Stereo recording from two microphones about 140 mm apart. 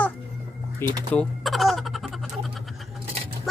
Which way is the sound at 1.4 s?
Centre (ahead or behind).